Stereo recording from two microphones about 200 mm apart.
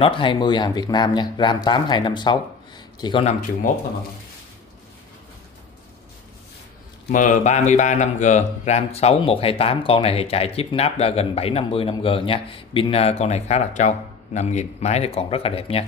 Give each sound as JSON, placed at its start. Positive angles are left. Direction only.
{"t": 0.0, "sound": "speech", "side_deg": 25}
{"t": 3.3, "sound": "speech", "side_deg": 40}
{"t": 7.1, "sound": "speech", "side_deg": 40}